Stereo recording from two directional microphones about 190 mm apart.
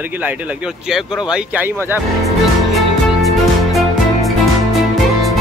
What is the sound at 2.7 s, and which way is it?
Music, centre (ahead or behind).